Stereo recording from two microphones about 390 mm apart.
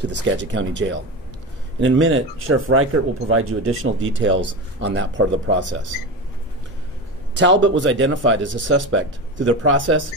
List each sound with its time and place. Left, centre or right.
0.0 s speech: right
7.3 s speech: right